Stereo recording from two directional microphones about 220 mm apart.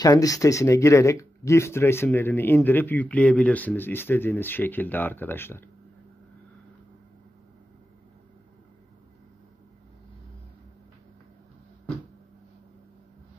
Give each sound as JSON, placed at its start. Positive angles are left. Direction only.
{"t": 0.0, "sound": "speech", "side_deg": 15}